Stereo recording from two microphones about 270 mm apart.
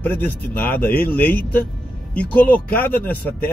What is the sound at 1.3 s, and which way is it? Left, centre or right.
Speech, left.